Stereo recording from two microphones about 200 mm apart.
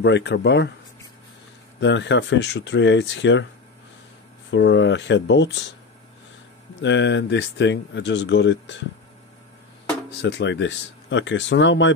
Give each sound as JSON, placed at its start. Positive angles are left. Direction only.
{"t": 0.0, "sound": "speech", "side_deg": 60}
{"t": 1.8, "sound": "speech", "side_deg": 65}
{"t": 4.5, "sound": "speech", "side_deg": 65}
{"t": 6.8, "sound": "speech", "side_deg": 65}
{"t": 10.2, "sound": "speech", "side_deg": 60}